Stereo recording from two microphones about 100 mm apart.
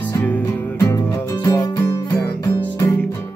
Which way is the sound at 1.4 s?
35° left (ahead or behind).